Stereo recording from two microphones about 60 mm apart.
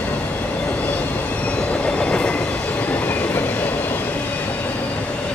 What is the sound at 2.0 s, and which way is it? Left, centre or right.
Train, left.